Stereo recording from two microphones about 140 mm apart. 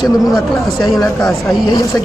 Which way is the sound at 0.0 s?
Centre (ahead or behind).